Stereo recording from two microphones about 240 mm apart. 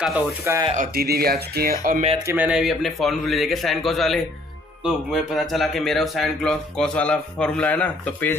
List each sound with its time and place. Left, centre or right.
0.6 s speech: right
0.9 s speech: right
2.1 s speech: centre